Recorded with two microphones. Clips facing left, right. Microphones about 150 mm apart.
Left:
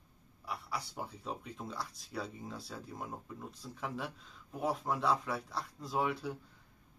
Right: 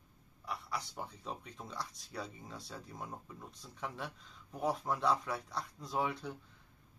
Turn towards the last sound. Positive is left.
turn(degrees=5)  # may be behind; listen again after turning